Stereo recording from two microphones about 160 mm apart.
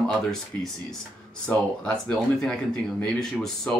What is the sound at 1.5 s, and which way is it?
Speech, 5° left (ahead or behind).